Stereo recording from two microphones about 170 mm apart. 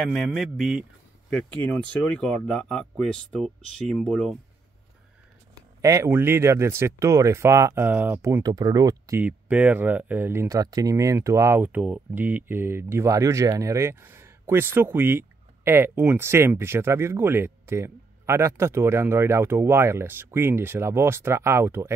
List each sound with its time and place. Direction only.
0.0 s speech: centre (ahead or behind)
1.3 s speech: 10° left (ahead or behind)
5.8 s speech: 15° right (ahead or behind)
9.2 s speech: 10° right (ahead or behind)